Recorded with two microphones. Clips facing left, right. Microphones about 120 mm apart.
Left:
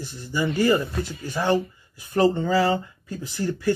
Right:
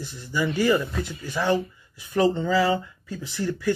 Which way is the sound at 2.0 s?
45° left (ahead or behind).